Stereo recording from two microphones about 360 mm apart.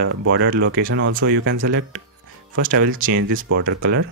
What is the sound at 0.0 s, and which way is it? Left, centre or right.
Speech, right.